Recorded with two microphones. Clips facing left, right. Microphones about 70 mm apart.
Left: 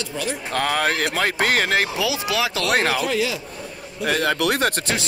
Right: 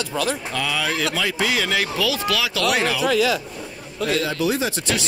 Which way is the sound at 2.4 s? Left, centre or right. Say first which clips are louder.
Left 2 dB; left.